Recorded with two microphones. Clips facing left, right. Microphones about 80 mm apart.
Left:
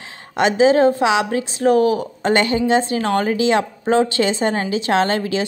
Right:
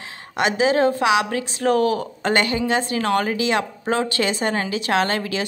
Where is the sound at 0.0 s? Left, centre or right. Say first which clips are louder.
Left 4 dB; left.